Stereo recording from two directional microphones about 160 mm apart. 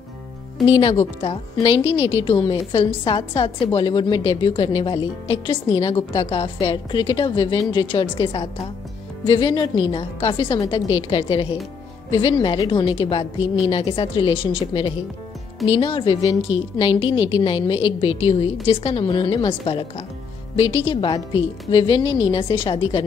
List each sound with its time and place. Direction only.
0.7 s a woman's voice: 35° left (ahead or behind)